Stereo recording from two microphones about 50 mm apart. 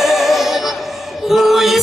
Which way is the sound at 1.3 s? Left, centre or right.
Centre.